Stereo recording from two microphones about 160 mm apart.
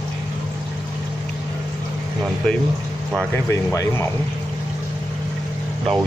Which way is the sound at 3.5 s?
20° left (ahead or behind).